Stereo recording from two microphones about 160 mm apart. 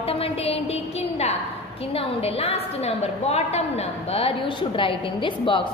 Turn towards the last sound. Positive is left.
turn(degrees=30)  # may be behind; listen again after turning